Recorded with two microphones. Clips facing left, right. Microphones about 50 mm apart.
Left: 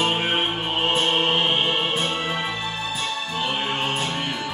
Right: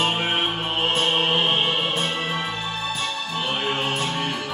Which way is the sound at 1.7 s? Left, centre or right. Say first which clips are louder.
Even; centre.